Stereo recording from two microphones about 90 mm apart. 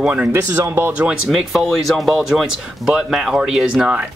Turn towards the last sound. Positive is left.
turn(degrees=-5)  # may be behind; listen again after turning